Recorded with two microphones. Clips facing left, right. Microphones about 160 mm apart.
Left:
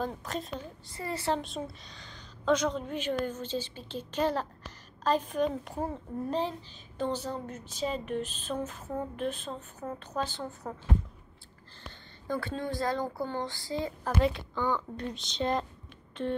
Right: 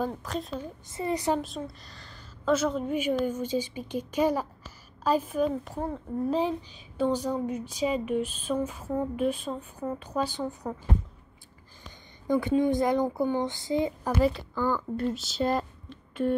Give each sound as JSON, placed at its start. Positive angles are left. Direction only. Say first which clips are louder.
{"t": 0.0, "sound": "a woman's voice", "louder": "right 3 dB", "side_deg": 0}
{"t": 0.6, "sound": "speech", "louder": "right 6 dB", "side_deg": -20}
{"t": 1.4, "sound": "a woman's voice", "louder": "right 2 dB", "side_deg": 0}
{"t": 7.0, "sound": "speech", "louder": "right 6 dB", "side_deg": -10}
{"t": 12.3, "sound": "speech", "louder": "right 10 dB", "side_deg": -15}
{"t": 14.2, "sound": "a woman's voice", "louder": "right 4 dB", "side_deg": -5}